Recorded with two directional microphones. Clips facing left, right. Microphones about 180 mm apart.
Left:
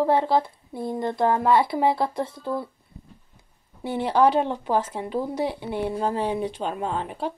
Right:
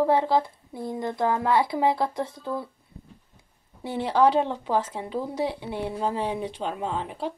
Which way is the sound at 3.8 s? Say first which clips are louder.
Left 1 dB; 60° left (ahead or behind).